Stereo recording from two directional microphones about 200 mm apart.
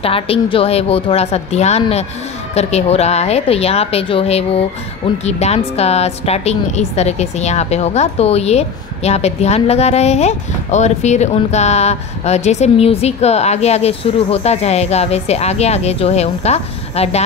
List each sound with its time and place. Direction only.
0.0 s a woman's voice: 30° left (ahead or behind)